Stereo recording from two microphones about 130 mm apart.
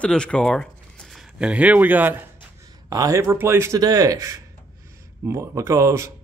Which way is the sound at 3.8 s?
30° right (ahead or behind).